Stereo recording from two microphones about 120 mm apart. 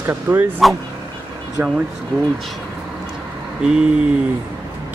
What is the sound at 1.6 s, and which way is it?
Speech, 15° right (ahead or behind).